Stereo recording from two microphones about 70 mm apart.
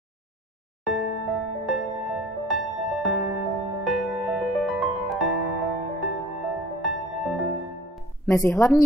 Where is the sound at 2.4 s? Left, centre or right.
Centre.